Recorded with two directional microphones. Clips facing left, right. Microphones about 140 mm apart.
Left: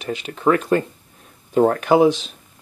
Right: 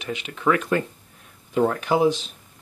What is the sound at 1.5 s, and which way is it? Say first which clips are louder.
Speech: left 5 dB; 45° left (ahead or behind).